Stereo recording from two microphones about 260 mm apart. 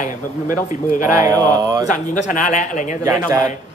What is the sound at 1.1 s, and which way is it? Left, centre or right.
Speech, centre.